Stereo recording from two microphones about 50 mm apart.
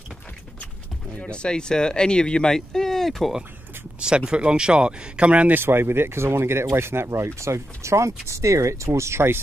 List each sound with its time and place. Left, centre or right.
1.2 s speech: centre
4.0 s speech: centre
5.5 s speech: right